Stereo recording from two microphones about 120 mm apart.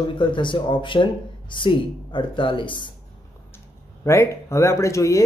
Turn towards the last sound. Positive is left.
turn(degrees=25)  # may be behind; listen again after turning